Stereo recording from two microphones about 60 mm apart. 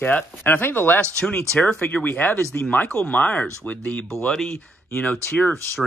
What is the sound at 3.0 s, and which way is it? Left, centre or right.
Speech, left.